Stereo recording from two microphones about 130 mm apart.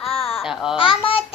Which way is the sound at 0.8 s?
45° left (ahead or behind).